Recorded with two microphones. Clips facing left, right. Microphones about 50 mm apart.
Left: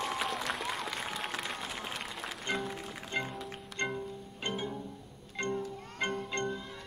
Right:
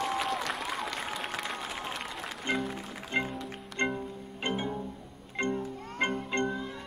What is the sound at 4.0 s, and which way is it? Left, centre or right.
Music, right.